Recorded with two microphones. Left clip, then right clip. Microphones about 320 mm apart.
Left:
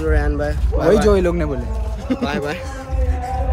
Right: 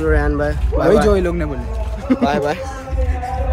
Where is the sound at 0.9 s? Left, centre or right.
Centre.